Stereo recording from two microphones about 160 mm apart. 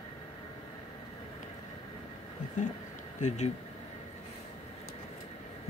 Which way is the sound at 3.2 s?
45° left (ahead or behind).